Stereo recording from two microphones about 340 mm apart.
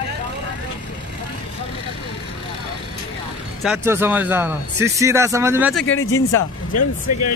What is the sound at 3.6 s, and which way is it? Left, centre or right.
A man's voice, centre.